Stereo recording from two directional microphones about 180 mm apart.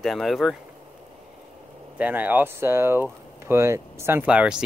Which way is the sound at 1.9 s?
10° right (ahead or behind).